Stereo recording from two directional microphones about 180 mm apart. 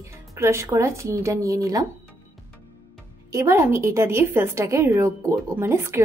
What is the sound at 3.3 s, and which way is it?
A woman's voice, 15° right (ahead or behind).